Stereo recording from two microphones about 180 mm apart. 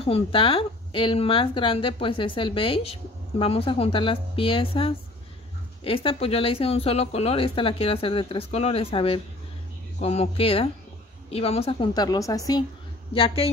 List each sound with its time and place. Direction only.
0.0 s a woman's voice: 30° left (ahead or behind)
13.1 s speech: 30° left (ahead or behind)